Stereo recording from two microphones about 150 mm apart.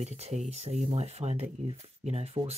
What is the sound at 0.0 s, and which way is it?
Speech, 45° right (ahead or behind).